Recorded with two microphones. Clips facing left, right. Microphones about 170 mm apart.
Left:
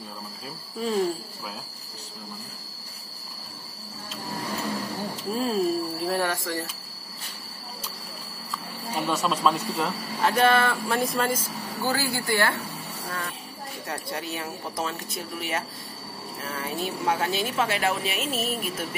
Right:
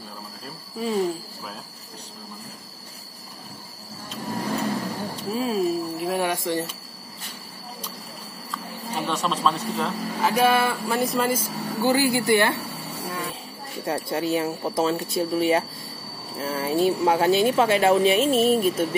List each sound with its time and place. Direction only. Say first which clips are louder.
5.3 s speech: right 1 dB; 5° right (ahead or behind); by 6.7 s 20° right (ahead or behind)
9.0 s speech: even; 10° left (ahead or behind)
10.3 s speech: right 1 dB; 10° right (ahead or behind)
11.8 s speech: right 7 dB; 15° right (ahead or behind)
13.8 s speech: right 9 dB; 25° right (ahead or behind)